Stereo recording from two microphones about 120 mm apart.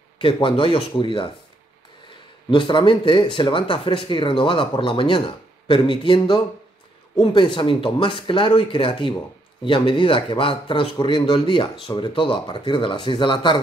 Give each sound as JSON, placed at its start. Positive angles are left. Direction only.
{"t": 0.2, "sound": "speech", "side_deg": 45}
{"t": 2.5, "sound": "speech", "side_deg": 40}